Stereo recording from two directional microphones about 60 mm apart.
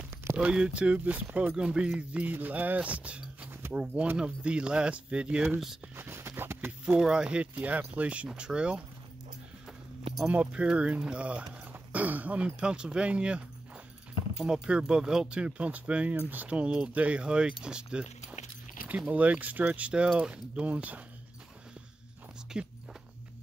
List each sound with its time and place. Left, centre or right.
0.4 s speech: centre
5.9 s a sound: right
7.0 s speech: centre
10.3 s speech: right
14.3 s speech: centre
18.9 s speech: right
22.5 s walk: centre